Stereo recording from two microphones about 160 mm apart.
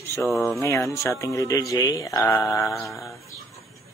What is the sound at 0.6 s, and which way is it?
Speech, 20° left (ahead or behind).